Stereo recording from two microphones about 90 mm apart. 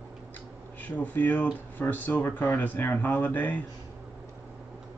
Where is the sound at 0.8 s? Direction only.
20° left (ahead or behind).